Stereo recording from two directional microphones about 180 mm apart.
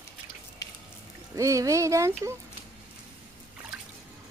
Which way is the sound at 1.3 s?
15° right (ahead or behind).